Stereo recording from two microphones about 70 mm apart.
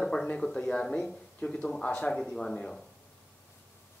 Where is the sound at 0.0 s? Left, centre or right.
Centre.